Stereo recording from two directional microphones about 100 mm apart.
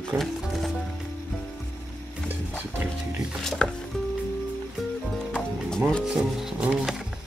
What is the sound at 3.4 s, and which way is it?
Music, 5° left (ahead or behind).